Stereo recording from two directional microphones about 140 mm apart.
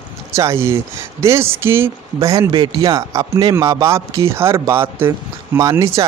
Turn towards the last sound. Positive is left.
turn(degrees=-25)  # may be behind; listen again after turning